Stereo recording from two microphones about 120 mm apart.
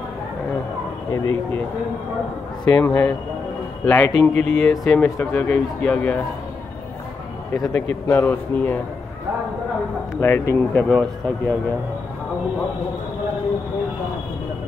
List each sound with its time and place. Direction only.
1.1 s speech: 25° left (ahead or behind)
2.6 s speech: 15° left (ahead or behind)
7.5 s a man's voice: 30° left (ahead or behind)
7.9 s speech: 15° left (ahead or behind)
10.2 s speech: 20° left (ahead or behind)